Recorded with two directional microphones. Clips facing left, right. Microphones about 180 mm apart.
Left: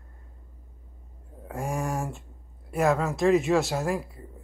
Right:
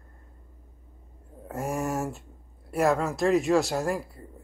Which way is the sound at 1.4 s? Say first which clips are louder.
Right 1 dB; centre (ahead or behind).